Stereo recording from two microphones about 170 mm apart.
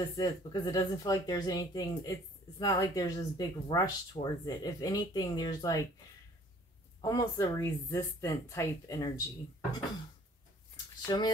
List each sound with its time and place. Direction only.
0.0 s speech: 20° left (ahead or behind)
7.0 s speech: 20° left (ahead or behind)
11.1 s speech: 25° left (ahead or behind)